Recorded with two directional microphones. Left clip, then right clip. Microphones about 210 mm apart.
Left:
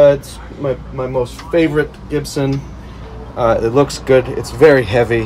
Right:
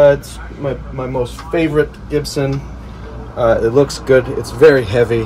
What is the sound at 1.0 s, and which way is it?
Speech, 5° left (ahead or behind).